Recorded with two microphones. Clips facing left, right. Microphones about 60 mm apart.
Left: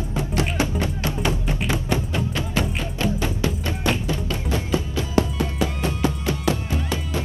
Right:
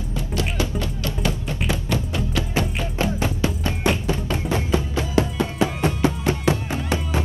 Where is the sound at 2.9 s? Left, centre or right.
Right.